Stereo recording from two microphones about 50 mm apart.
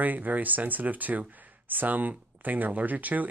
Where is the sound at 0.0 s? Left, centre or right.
Right.